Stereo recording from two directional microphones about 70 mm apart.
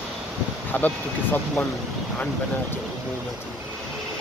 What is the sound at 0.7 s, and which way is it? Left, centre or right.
Speech, left.